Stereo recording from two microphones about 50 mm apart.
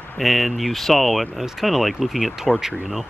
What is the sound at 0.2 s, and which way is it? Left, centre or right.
Speech, centre.